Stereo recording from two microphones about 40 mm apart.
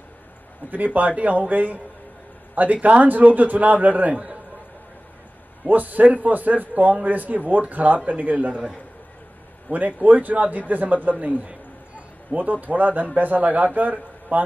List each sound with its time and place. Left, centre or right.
0.7 s speech: right
5.7 s a man's voice: right
8.5 s a man's voice: centre
9.7 s a man's voice: right